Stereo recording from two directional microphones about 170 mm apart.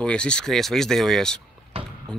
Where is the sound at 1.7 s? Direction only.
35° right (ahead or behind).